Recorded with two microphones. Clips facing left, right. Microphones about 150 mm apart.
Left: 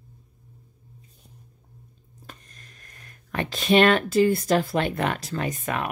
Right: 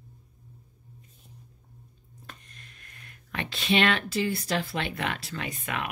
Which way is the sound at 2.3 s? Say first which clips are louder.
Left 2 dB; 40° left (ahead or behind).